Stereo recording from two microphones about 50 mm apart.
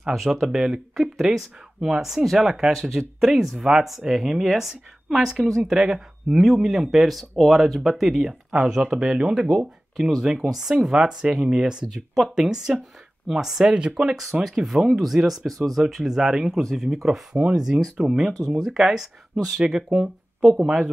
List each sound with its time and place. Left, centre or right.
0.1 s speech: centre
0.5 s speech: centre
0.9 s speech: centre
3.2 s speech: centre
14.6 s speech: centre
16.5 s speech: centre
16.9 s speech: centre